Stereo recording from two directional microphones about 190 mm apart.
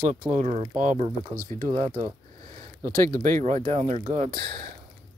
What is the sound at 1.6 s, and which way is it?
Speech, 25° right (ahead or behind).